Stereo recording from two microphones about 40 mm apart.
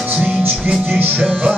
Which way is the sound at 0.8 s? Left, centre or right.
Right.